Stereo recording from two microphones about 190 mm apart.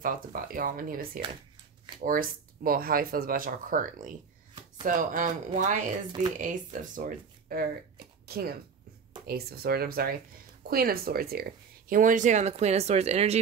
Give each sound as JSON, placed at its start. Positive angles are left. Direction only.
{"t": 0.0, "sound": "speech", "side_deg": -45}